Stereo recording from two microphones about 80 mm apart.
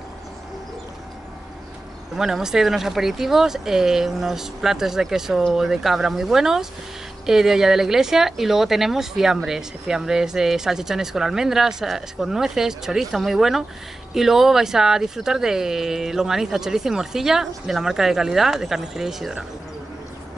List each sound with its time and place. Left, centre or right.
2.1 s speech: centre